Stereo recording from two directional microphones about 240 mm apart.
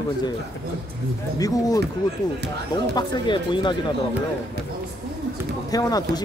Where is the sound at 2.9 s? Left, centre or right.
Centre.